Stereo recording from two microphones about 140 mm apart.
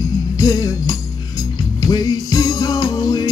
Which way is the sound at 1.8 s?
25° left (ahead or behind).